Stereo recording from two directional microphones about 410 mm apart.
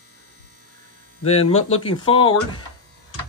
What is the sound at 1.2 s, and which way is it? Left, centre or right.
Speech, centre.